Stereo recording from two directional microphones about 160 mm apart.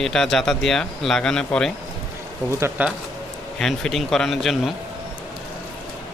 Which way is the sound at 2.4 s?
15° right (ahead or behind).